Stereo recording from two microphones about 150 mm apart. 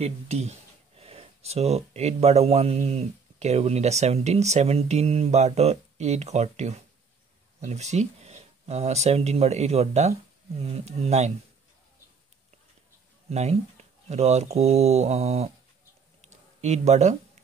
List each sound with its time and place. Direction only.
0.0 s speech: 45° right (ahead or behind)
13.3 s speech: 45° right (ahead or behind)
16.2 s a sound: 50° right (ahead or behind)